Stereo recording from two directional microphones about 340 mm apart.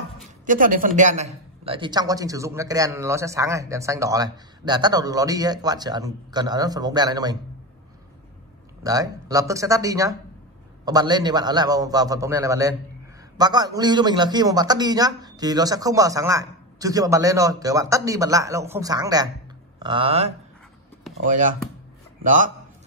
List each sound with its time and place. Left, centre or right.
0.5 s a man's voice: right
8.8 s a man's voice: centre